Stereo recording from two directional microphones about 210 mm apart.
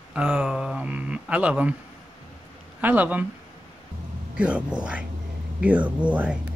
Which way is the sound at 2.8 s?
10° right (ahead or behind).